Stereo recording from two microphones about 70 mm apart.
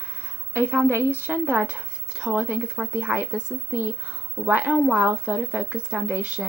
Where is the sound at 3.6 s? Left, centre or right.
Right.